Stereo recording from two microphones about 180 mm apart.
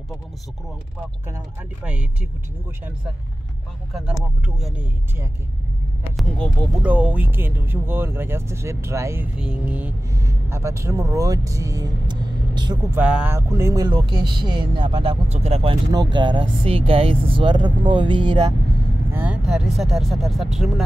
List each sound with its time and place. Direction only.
3.9 s speech: centre (ahead or behind)
6.1 s speech: 5° left (ahead or behind)
6.8 s speech: 10° right (ahead or behind); by 12.7 s 25° right (ahead or behind)
13.1 s speech: 10° right (ahead or behind)
19.1 s speech: 5° right (ahead or behind)